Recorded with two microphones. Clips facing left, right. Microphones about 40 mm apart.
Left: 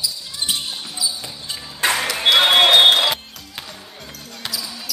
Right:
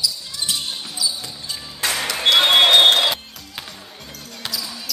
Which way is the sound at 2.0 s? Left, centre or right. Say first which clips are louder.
Even; centre.